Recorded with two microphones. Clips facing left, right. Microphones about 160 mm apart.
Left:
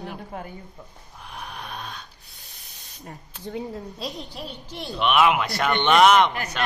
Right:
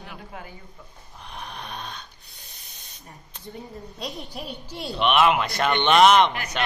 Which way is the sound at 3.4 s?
75° left (ahead or behind).